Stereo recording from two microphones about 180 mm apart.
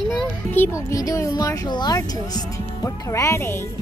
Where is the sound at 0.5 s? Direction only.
15° left (ahead or behind).